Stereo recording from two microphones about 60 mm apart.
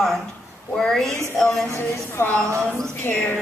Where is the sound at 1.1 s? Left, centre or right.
Left.